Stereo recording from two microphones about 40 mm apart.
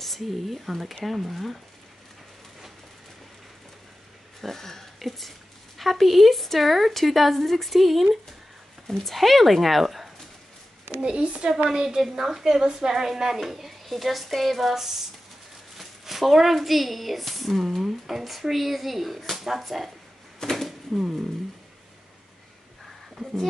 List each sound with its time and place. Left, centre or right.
0.0 s speech: centre
4.4 s burping: centre
4.9 s speech: centre
8.8 s speech: centre
11.0 s speech: right
11.7 s a woman's voice: centre
20.4 s a sound: centre